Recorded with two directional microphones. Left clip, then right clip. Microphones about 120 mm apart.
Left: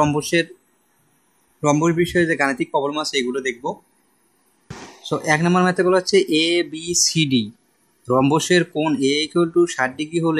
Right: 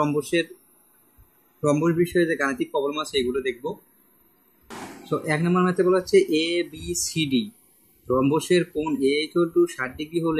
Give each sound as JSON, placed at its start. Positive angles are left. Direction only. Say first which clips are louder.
{"t": 0.0, "sound": "speech", "louder": "left 5 dB", "side_deg": 55}
{"t": 1.6, "sound": "speech", "louder": "left 4 dB", "side_deg": 50}
{"t": 5.1, "sound": "speech", "louder": "left 5 dB", "side_deg": 65}